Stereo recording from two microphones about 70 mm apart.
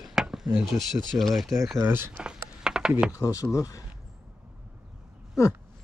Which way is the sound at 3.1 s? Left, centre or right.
Left.